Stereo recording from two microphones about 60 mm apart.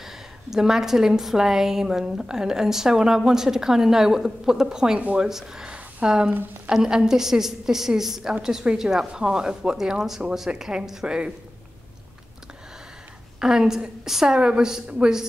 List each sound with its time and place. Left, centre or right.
0.0 s a woman's voice: centre
13.4 s a woman's voice: centre